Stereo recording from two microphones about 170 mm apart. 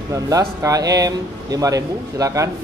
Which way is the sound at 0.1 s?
20° right (ahead or behind).